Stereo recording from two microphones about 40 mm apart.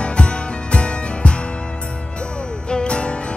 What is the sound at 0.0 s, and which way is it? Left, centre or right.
Music, left.